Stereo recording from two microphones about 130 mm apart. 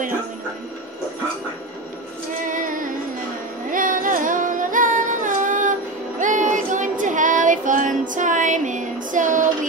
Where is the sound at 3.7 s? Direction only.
90° right.